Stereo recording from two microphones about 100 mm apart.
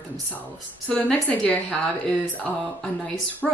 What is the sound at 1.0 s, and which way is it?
Speech, 10° left (ahead or behind).